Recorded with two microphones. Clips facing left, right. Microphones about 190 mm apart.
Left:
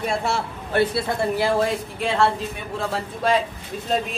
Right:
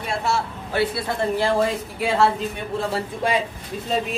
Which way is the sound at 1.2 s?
5° left (ahead or behind).